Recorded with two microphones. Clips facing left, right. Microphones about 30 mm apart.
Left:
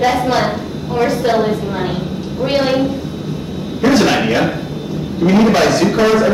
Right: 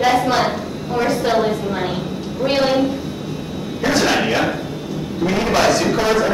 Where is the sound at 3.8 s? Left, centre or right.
Centre.